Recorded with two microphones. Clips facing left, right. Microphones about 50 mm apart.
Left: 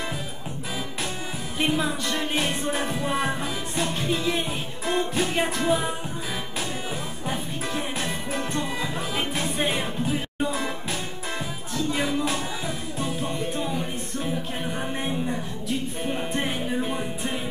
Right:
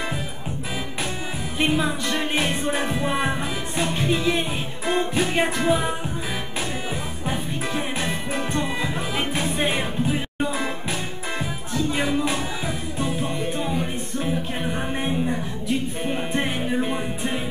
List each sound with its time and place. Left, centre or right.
1.6 s music: centre
2.0 s music: centre
2.5 s music: centre
7.2 s music: centre